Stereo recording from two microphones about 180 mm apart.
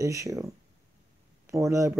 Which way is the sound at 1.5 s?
15° right (ahead or behind).